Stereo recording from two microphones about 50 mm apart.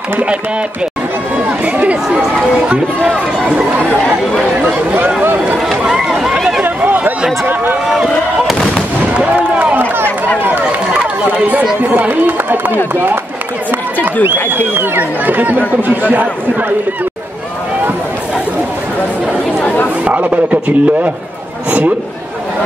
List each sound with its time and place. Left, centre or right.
1.6 s speech: right
3.4 s chatter: right
5.6 s run: centre
6.6 s a sound: right
9.1 s a sound: right
12.1 s speech: right
14.7 s a man's voice: right
20.1 s a man's voice: right